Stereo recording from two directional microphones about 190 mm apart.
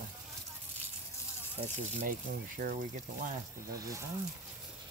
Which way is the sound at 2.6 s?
45° right (ahead or behind).